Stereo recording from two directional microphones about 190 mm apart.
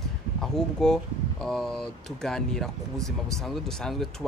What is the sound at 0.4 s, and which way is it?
Speech, 5° left (ahead or behind).